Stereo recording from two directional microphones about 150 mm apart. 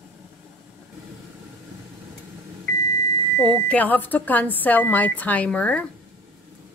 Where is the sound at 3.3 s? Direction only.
5° left (ahead or behind).